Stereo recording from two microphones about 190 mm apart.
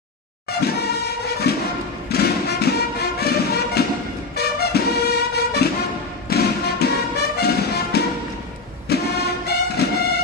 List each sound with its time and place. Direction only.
0.5 s music: 60° left (ahead or behind)
8.9 s vehicle: 55° left (ahead or behind)
9.5 s music: 55° left (ahead or behind)